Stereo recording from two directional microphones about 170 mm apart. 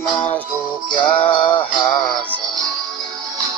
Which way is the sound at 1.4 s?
25° left (ahead or behind).